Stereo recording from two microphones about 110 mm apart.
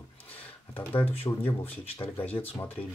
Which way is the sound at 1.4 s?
15° left (ahead or behind).